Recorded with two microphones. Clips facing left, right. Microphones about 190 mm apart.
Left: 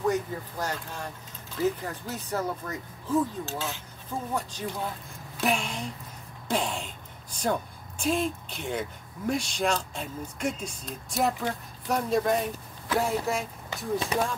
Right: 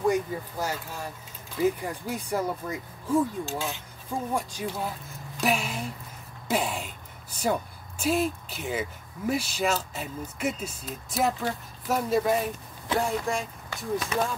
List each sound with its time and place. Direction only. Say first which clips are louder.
0.0 s a woman's voice: right 2 dB; 10° right (ahead or behind)